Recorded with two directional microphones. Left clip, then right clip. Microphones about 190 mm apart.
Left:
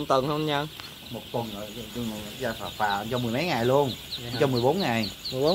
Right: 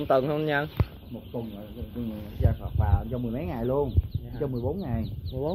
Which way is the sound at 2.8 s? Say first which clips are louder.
Left 9 dB; 25° left (ahead or behind).